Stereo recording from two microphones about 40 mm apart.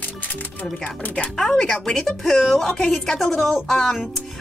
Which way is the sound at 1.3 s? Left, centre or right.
Centre.